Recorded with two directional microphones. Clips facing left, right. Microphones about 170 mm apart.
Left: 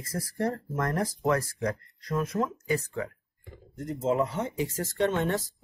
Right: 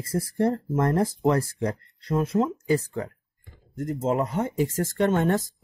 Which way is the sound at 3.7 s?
50° right (ahead or behind).